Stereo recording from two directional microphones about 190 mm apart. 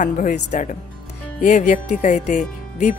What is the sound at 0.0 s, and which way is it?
A woman's voice, 40° left (ahead or behind).